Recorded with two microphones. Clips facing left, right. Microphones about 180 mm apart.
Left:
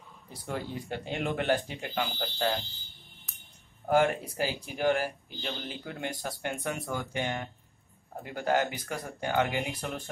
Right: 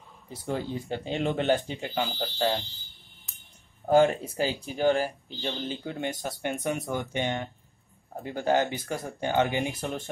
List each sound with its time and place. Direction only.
0.3 s speech: 25° right (ahead or behind)
3.8 s speech: 25° right (ahead or behind)